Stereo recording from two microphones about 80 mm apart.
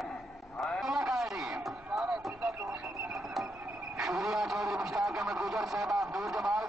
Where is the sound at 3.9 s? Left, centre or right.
Centre.